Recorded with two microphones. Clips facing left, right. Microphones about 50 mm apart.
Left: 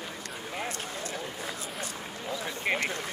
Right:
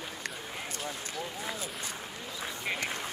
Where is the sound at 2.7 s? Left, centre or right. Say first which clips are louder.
Left 6 dB; left.